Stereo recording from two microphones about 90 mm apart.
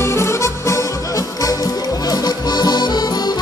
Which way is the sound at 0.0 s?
30° left (ahead or behind).